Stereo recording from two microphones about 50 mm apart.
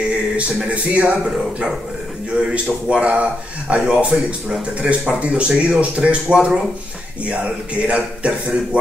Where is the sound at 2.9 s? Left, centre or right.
Right.